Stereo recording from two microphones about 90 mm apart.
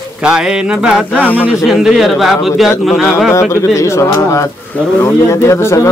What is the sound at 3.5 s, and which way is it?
Speech, 35° left (ahead or behind).